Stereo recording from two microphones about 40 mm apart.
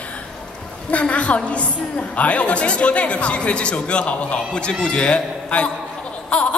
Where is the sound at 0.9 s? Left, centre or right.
Left.